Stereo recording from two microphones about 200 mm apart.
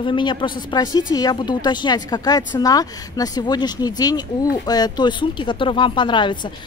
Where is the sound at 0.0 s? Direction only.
25° left (ahead or behind).